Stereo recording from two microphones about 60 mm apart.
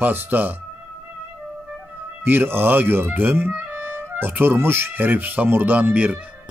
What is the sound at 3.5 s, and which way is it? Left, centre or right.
Music, right.